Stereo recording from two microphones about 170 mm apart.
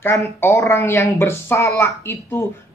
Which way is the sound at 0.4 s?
15° left (ahead or behind).